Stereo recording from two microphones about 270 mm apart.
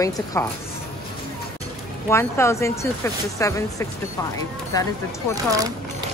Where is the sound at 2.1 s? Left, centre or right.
Centre.